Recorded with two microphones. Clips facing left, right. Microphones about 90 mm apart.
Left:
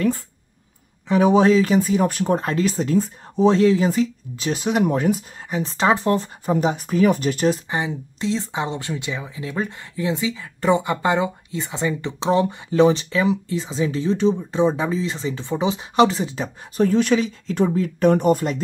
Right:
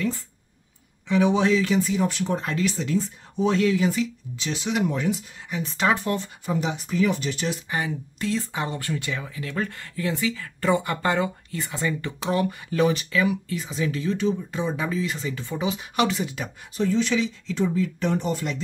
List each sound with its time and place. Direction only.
1.0 s speech: 40° left (ahead or behind)
5.6 s speech: 30° left (ahead or behind)
7.7 s speech: 20° left (ahead or behind)
16.7 s speech: 50° left (ahead or behind)